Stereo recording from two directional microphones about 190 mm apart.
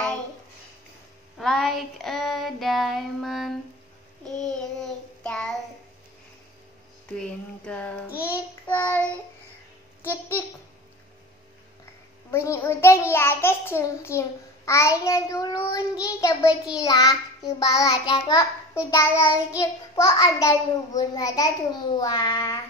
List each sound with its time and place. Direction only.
1.4 s child singing: centre (ahead or behind)
7.2 s child singing: 5° left (ahead or behind)
8.1 s child singing: 10° right (ahead or behind)
8.6 s child singing: 10° left (ahead or behind)
10.0 s a child's voice: 15° left (ahead or behind)
12.3 s a child's voice: 15° left (ahead or behind)